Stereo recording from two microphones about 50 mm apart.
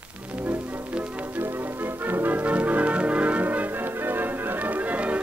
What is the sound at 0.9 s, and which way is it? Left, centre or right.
Music, right.